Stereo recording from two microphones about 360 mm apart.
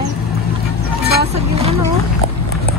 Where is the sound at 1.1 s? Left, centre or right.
Right.